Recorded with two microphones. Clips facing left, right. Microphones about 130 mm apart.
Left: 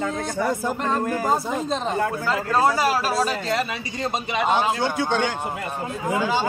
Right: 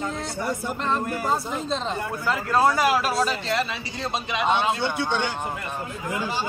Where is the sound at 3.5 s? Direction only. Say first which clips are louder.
Left 1 dB; 15° left (ahead or behind).